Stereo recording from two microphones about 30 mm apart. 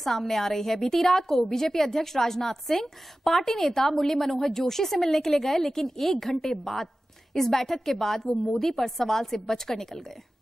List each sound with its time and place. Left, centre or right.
0.0 s a woman's voice: centre